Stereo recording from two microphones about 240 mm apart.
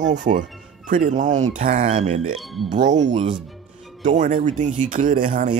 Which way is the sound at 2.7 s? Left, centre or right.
Right.